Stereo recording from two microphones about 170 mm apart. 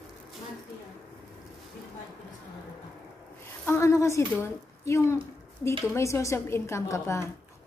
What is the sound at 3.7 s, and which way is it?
A woman's voice, 15° left (ahead or behind).